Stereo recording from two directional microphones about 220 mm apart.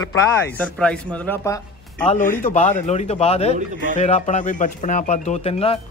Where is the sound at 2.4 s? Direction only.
35° left (ahead or behind).